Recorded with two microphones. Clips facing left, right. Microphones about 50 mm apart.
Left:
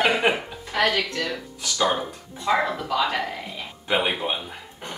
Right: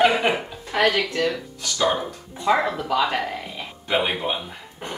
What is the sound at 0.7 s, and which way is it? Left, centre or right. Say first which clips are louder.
Speech: right 2 dB; centre.